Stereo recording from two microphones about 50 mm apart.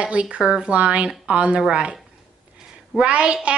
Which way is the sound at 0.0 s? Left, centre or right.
Right.